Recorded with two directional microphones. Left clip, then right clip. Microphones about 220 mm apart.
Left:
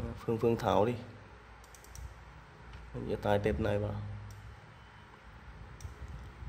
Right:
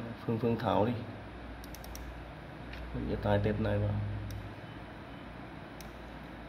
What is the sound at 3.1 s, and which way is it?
Speech, 30° left (ahead or behind).